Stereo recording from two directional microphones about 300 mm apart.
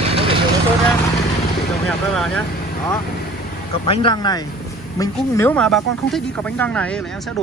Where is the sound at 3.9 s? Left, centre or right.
Centre.